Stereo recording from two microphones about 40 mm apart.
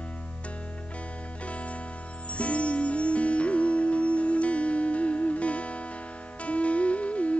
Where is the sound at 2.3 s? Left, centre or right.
Left.